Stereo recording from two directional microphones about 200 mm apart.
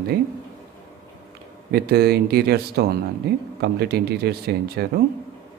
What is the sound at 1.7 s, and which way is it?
Speech, 50° right (ahead or behind).